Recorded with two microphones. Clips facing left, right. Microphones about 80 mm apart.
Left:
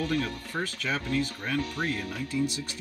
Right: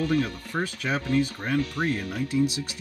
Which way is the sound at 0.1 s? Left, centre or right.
Centre.